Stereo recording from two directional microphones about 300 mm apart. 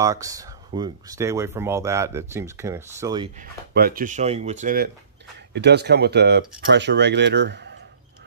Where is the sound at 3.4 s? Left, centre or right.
Right.